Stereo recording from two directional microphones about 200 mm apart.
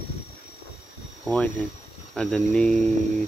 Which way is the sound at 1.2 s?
5° left (ahead or behind).